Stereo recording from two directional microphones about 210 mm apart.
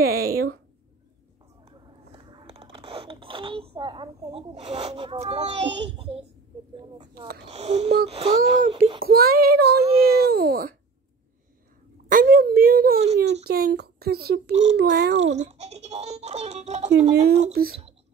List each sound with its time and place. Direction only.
0.0 s a sound: 45° right (ahead or behind)
1.7 s a sound: 25° right (ahead or behind)
5.6 s a child's voice: 55° right (ahead or behind)
7.4 s speech: 30° right (ahead or behind)
8.4 s a child's voice: 40° right (ahead or behind)
12.1 s whimper: 45° right (ahead or behind)
13.2 s a child's voice: 50° right (ahead or behind)
14.5 s speech: 30° right (ahead or behind)
14.8 s a child's voice: 50° right (ahead or behind)
15.3 s speech: 30° right (ahead or behind)
17.5 s a child's voice: 45° right (ahead or behind)